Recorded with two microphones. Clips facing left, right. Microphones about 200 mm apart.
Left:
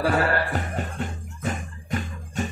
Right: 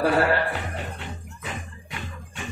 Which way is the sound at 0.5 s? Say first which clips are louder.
Left 2 dB; 45° left (ahead or behind).